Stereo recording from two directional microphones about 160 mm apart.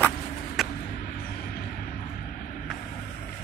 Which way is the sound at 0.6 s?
Centre (ahead or behind).